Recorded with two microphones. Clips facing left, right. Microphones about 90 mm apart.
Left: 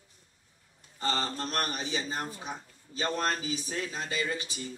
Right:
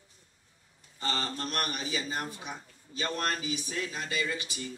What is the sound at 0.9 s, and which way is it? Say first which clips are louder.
A man's voice: left 2 dB; 35° left (ahead or behind).